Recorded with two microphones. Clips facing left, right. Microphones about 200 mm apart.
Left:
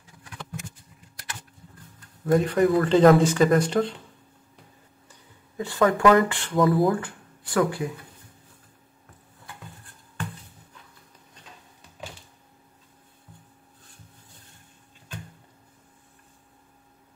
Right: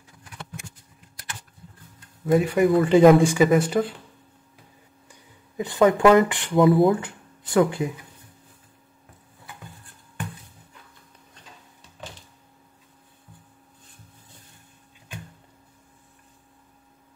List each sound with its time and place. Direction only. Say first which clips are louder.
2.3 s speech: right 1 dB; 10° right (ahead or behind)
5.6 s speech: right 3 dB; 20° right (ahead or behind)